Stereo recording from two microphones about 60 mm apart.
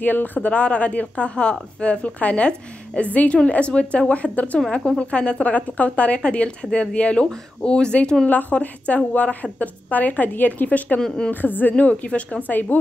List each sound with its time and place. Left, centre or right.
0.0 s a woman's voice: left
4.6 s a woman's voice: centre; by 11.0 s left
11.0 s speech: centre
11.2 s a woman's voice: left